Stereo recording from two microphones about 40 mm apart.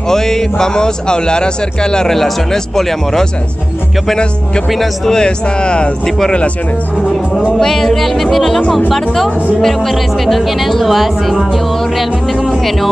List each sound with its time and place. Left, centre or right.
0.1 s speech: centre
2.1 s speech: centre
4.6 s speech: centre
5.1 s speech: left
6.0 s speech: centre
7.5 s speech: centre